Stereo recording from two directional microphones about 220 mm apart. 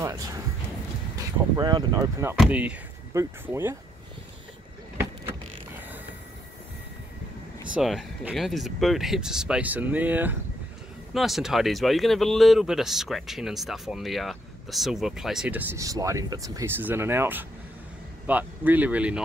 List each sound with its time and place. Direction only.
0.0 s music: 15° right (ahead or behind)
1.1 s speech: 20° right (ahead or behind)
2.3 s speech: 5° right (ahead or behind)
7.7 s speech: centre (ahead or behind)